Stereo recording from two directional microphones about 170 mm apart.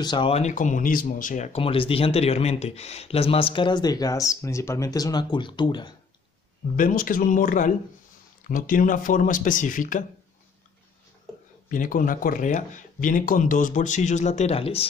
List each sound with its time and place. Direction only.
0.0 s speech: 30° left (ahead or behind)
6.8 s speech: 55° left (ahead or behind)
11.7 s speech: 50° left (ahead or behind); by 14.9 s 35° left (ahead or behind)